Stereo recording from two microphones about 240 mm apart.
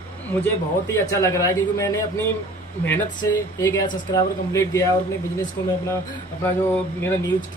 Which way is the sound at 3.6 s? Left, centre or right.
Centre.